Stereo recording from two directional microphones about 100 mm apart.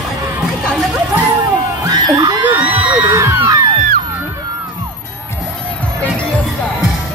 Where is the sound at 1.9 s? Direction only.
45° right (ahead or behind); by 3.1 s 60° right (ahead or behind).